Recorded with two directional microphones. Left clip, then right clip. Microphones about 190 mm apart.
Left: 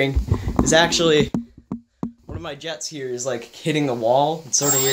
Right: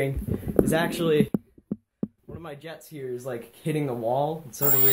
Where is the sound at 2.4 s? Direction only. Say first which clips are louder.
Left 10 dB; 20° left (ahead or behind).